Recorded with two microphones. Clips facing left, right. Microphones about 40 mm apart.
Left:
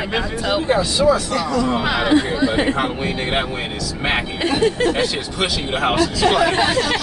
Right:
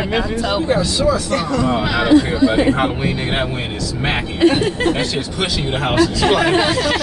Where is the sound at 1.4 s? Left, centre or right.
Right.